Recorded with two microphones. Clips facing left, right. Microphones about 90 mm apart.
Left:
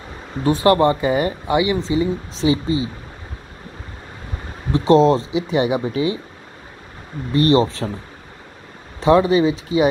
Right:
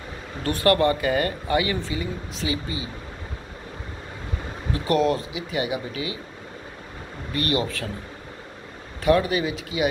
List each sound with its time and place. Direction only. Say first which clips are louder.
0.4 s speech: left 5 dB; 20° left (ahead or behind)
4.7 s speech: left 8 dB; 25° left (ahead or behind)
7.3 s speech: left 10 dB; 30° left (ahead or behind)
9.0 s speech: left 7 dB; 25° left (ahead or behind)